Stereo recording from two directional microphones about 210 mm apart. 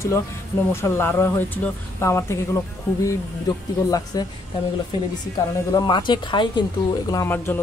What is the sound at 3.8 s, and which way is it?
Speech, 15° left (ahead or behind).